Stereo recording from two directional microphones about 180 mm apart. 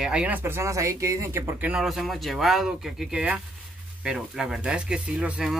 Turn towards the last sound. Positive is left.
turn(degrees=-5)  # may be behind; listen again after turning